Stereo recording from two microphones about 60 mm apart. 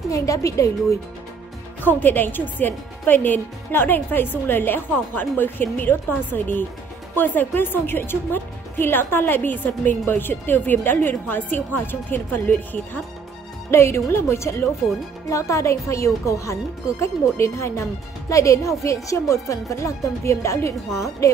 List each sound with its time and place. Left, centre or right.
0.1 s speech: left
1.8 s a woman's voice: left
13.7 s speech: left